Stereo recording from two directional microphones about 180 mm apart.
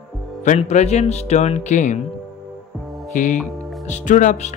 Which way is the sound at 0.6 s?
40° left (ahead or behind).